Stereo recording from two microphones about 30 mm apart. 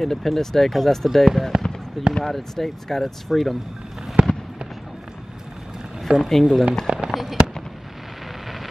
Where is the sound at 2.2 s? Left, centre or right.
Centre.